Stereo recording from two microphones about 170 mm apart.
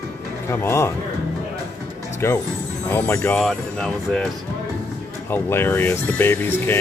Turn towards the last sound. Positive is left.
turn(degrees=10)  # may be behind; listen again after turning